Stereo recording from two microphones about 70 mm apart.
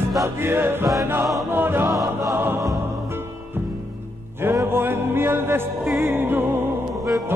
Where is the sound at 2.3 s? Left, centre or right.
Right.